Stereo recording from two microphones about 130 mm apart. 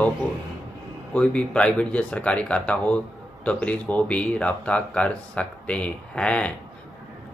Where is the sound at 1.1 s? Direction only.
10° left (ahead or behind).